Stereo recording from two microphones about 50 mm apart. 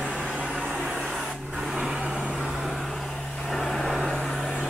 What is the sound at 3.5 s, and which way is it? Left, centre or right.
Vehicle, centre.